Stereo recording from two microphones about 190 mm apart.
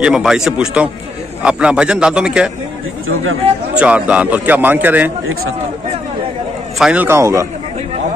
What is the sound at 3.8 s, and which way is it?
A man's voice, 5° right (ahead or behind).